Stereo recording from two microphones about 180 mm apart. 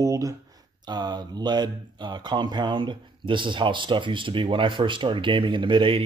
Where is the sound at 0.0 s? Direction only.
15° right (ahead or behind).